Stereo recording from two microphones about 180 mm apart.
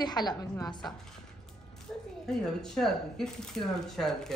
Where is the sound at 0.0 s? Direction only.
20° left (ahead or behind).